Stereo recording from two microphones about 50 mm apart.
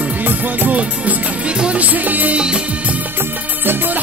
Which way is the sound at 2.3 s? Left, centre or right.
Centre.